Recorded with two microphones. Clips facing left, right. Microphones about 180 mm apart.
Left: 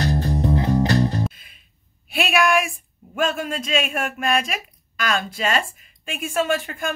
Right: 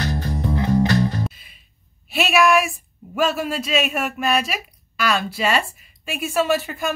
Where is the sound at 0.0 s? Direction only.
30° left (ahead or behind).